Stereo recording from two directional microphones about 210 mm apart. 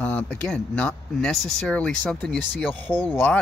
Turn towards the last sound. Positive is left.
turn(degrees=10)  # may be behind; listen again after turning